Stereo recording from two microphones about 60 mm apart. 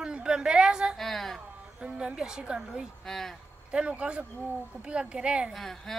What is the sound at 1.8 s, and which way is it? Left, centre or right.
A woman's voice, centre.